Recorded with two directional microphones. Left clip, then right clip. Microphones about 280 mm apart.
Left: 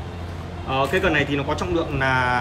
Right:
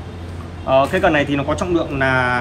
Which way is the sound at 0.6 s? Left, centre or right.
Centre.